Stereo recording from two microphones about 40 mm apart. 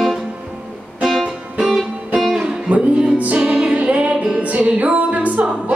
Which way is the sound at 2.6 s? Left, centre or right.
Right.